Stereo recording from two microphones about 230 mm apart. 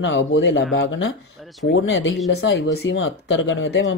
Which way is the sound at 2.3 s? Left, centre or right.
Left.